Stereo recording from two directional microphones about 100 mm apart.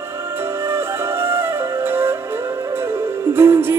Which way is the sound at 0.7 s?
25° right (ahead or behind).